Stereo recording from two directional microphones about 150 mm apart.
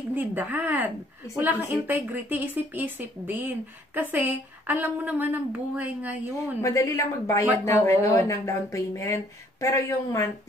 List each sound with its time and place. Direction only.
0.1 s a woman's voice: 15° right (ahead or behind)
6.6 s speech: 20° left (ahead or behind)